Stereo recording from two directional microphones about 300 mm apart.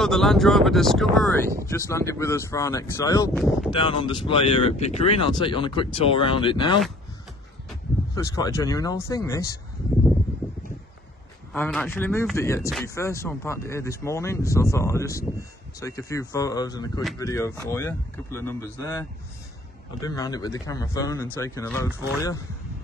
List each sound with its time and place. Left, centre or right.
0.0 s speech: centre
8.1 s speech: centre
11.5 s speech: centre